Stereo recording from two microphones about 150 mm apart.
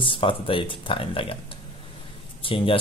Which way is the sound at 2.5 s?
35° left (ahead or behind).